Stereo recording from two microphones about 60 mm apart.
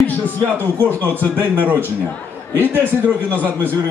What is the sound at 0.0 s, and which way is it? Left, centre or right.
Music, left.